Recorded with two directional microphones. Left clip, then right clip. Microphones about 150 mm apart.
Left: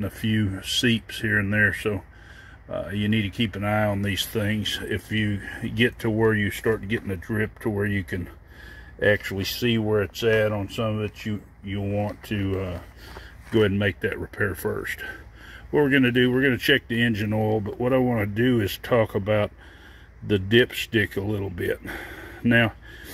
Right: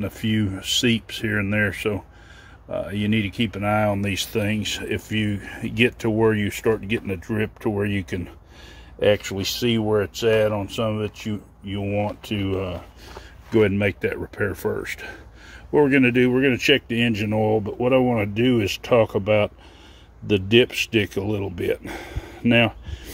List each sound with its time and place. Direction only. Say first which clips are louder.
0.0 s speech: right 2 dB; 10° right (ahead or behind)